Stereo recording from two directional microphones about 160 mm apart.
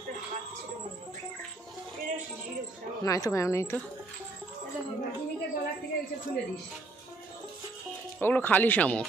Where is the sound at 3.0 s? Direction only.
20° left (ahead or behind).